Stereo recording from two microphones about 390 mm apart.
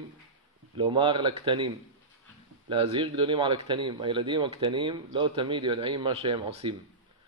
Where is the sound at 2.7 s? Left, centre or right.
Centre.